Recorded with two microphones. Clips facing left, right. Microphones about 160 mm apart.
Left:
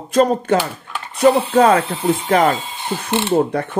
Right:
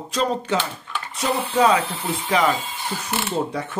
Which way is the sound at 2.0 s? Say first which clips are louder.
Left 9 dB; 25° left (ahead or behind).